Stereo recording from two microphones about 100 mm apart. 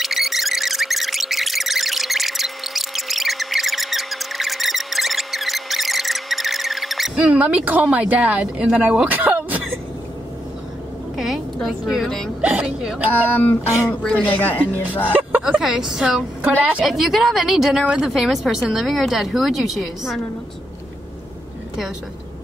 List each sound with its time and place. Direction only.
0.0 s a sound: centre (ahead or behind)
7.2 s speech: 15° right (ahead or behind)
11.1 s a sound: centre (ahead or behind)
11.9 s speech: centre (ahead or behind)
12.4 s speech: 15° right (ahead or behind)
13.3 s speech: 20° left (ahead or behind)
15.1 s speech: 15° right (ahead or behind)